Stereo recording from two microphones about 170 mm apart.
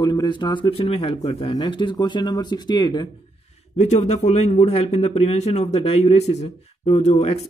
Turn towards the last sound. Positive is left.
turn(degrees=40)  # may be behind; listen again after turning